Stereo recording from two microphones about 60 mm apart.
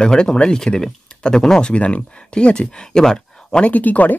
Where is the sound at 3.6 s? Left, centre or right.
Left.